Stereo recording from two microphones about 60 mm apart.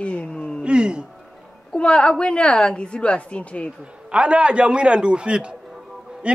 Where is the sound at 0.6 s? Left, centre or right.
Centre.